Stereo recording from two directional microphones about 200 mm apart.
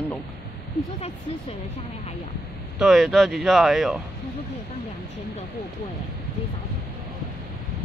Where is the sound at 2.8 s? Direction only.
Centre (ahead or behind).